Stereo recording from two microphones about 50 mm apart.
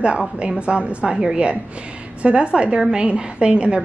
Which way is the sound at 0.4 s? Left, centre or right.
Right.